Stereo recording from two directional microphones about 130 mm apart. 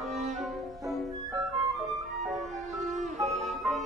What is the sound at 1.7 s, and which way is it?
Music, centre (ahead or behind).